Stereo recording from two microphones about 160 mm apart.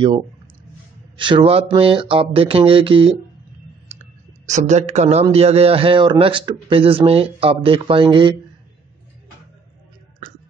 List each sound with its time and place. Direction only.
1.1 s speech: 30° right (ahead or behind)
3.9 s speech: 45° right (ahead or behind); by 8.4 s 30° right (ahead or behind)